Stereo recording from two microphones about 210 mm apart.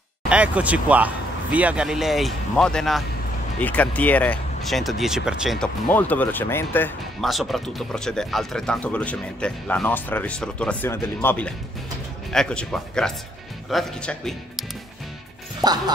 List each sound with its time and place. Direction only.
0.3 s speech: 5° right (ahead or behind)
15.6 s speech: 20° right (ahead or behind)